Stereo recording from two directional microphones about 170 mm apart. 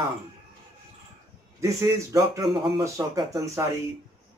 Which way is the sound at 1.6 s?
20° right (ahead or behind).